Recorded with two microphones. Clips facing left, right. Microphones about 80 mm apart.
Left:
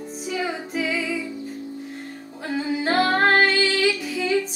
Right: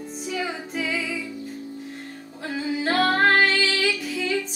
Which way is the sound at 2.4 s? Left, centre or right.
Centre.